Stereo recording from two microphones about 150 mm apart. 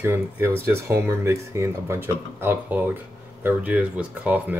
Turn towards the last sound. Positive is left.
turn(degrees=-10)  # may be behind; listen again after turning